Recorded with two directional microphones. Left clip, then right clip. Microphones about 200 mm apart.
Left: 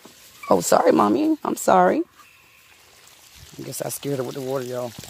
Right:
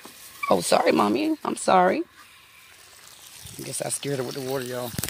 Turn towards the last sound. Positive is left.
turn(degrees=10)  # may be behind; listen again after turning